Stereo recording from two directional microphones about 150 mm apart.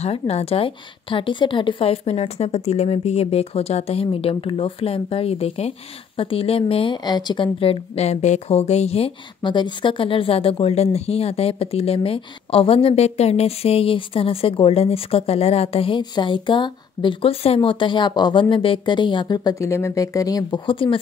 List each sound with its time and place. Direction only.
0.0 s a woman's voice: 45° left (ahead or behind)